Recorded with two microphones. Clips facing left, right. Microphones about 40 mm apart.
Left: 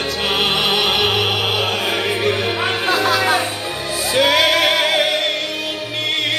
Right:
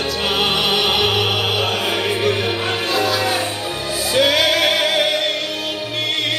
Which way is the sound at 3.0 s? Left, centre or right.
Left.